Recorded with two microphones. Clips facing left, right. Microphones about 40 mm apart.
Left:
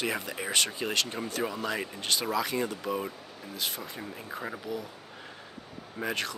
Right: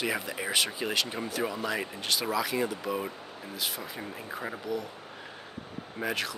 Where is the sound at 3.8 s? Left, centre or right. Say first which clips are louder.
Right 1 dB; centre.